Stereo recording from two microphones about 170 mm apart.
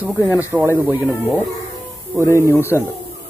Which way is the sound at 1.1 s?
15° left (ahead or behind).